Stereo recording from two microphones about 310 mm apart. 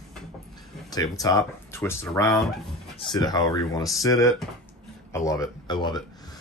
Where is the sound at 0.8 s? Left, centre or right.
Centre.